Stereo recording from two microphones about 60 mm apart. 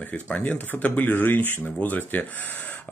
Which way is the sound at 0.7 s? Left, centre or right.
Left.